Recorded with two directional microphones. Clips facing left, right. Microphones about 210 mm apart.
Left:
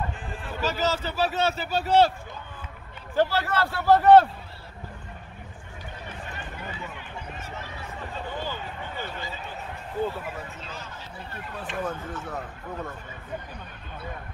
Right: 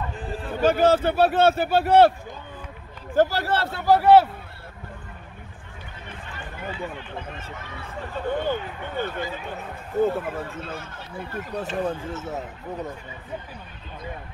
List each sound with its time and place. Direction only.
0.1 s a sound: 35° right (ahead or behind)
0.5 s a man's voice: 55° right (ahead or behind)
3.2 s speech: 40° right (ahead or behind)
3.5 s a man's voice: 20° right (ahead or behind)
8.3 s a man's voice: 55° right (ahead or behind); by 12.9 s 20° right (ahead or behind)